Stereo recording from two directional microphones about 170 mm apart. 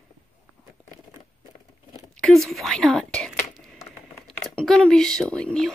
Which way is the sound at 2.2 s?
Centre (ahead or behind).